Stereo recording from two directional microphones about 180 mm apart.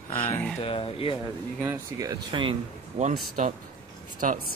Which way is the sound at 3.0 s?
35° right (ahead or behind).